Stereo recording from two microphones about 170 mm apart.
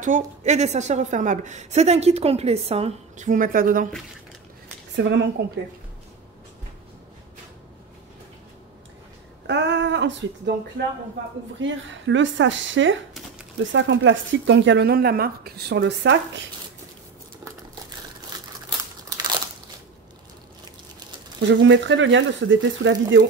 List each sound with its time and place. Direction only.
0.0 s a woman's voice: 45° right (ahead or behind)
3.3 s a woman's voice: 55° right (ahead or behind)
4.9 s speech: 90° right
9.5 s speech: 90° right
11.6 s speech: 90° right
19.0 s crunch: 25° right (ahead or behind)
21.5 s speech: 90° right